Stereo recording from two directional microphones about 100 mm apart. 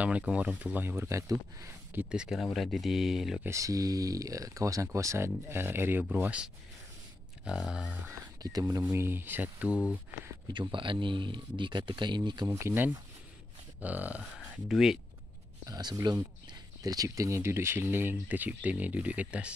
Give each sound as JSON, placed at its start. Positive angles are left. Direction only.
{"t": 0.2, "sound": "speech", "side_deg": -10}
{"t": 2.0, "sound": "speech", "side_deg": -10}
{"t": 3.4, "sound": "speech", "side_deg": -30}
{"t": 8.4, "sound": "speech", "side_deg": -40}
{"t": 10.5, "sound": "speech", "side_deg": -55}
{"t": 12.5, "sound": "speech", "side_deg": -25}
{"t": 14.2, "sound": "speech", "side_deg": 0}
{"t": 15.6, "sound": "speech", "side_deg": -40}